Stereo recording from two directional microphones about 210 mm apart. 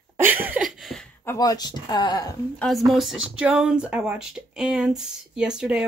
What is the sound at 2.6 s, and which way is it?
Speech, centre (ahead or behind).